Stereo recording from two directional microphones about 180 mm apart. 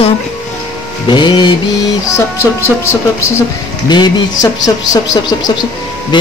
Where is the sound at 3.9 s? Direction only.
20° left (ahead or behind).